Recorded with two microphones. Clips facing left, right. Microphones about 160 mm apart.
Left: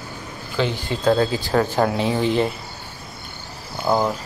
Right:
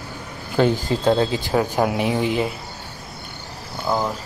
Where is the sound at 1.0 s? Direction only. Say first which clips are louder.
Left 2 dB; 20° right (ahead or behind).